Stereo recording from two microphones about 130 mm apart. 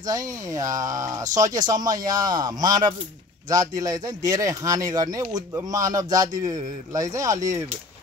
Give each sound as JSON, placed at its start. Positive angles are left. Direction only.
{"t": 0.0, "sound": "speech", "side_deg": -30}